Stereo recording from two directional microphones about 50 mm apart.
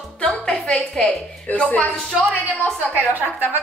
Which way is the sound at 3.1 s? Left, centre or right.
Right.